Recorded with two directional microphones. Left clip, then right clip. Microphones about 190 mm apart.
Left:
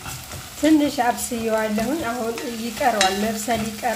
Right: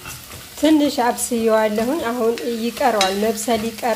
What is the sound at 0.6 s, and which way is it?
Speech, 30° right (ahead or behind).